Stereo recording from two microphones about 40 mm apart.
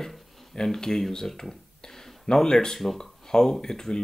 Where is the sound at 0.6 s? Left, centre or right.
Centre.